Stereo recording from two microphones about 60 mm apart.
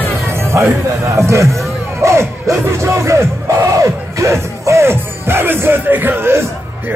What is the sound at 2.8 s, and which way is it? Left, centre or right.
Speech, right.